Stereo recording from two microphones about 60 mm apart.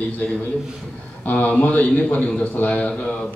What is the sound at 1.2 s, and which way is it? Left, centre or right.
A man's voice, left.